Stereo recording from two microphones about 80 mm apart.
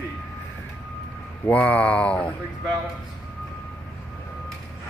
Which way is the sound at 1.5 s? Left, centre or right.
Centre.